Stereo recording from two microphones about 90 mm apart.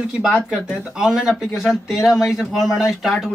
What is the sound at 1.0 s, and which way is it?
Speech, 5° right (ahead or behind).